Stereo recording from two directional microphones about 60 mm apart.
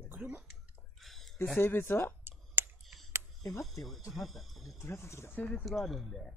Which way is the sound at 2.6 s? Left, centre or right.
Right.